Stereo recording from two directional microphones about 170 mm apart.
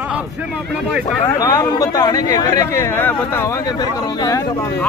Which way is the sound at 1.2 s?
20° left (ahead or behind).